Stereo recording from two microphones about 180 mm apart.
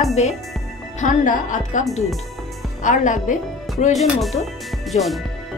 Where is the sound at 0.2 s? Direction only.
40° left (ahead or behind).